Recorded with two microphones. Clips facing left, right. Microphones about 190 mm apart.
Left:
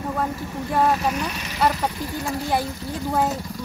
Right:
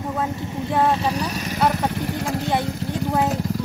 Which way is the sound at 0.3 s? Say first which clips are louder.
Right 2 dB; 20° right (ahead or behind).